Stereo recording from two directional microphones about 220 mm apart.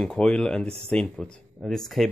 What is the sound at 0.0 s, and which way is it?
Speech, 5° left (ahead or behind).